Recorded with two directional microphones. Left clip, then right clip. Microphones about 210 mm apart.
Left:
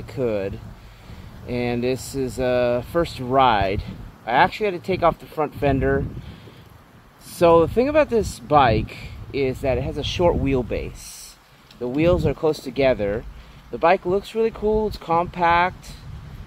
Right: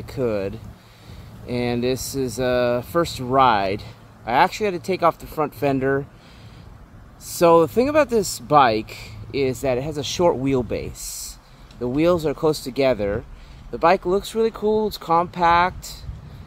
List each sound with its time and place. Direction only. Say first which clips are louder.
0.0 s speech: even; 5° right (ahead or behind)
7.3 s speech: even; 5° right (ahead or behind)